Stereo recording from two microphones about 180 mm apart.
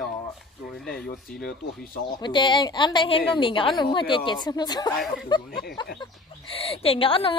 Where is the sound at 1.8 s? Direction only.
55° left (ahead or behind).